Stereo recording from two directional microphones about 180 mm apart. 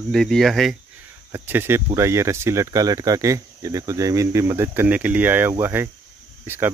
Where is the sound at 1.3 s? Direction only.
10° right (ahead or behind).